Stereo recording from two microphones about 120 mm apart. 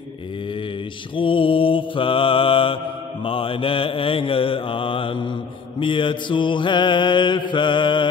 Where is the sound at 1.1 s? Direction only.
45° left (ahead or behind).